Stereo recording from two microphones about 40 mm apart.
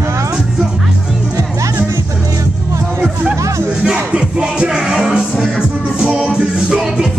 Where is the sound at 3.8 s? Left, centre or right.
Right.